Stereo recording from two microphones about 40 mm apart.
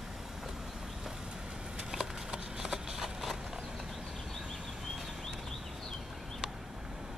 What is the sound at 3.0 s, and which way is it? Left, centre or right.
Clip-clop, centre.